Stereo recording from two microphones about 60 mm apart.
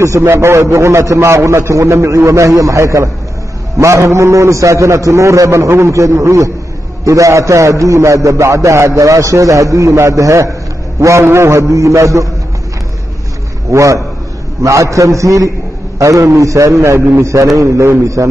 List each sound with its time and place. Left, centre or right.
0.0 s a man's voice: right
13.7 s a man's voice: right